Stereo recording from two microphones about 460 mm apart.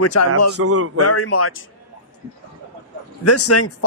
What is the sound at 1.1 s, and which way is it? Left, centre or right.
Speech, left.